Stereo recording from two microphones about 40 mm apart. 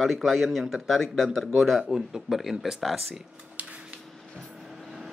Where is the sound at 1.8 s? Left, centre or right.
Centre.